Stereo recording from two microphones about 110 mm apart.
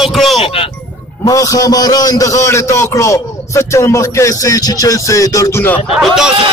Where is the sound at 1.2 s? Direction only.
30° left (ahead or behind).